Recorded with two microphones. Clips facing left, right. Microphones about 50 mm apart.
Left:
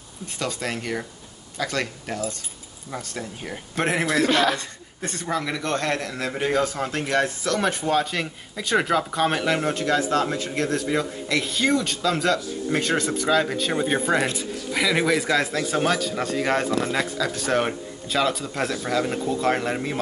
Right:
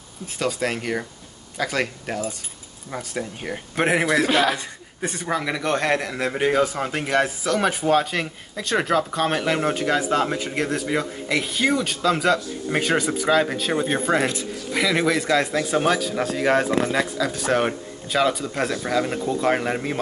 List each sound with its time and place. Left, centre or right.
0.4 s a man's voice: centre